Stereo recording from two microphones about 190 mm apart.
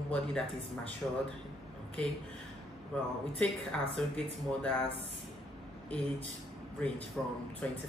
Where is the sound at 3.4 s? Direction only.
5° left (ahead or behind).